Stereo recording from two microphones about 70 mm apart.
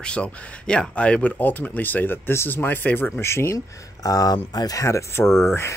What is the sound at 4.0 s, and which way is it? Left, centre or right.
Speech, left.